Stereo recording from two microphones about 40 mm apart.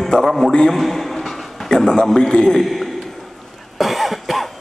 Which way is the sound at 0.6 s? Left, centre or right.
Centre.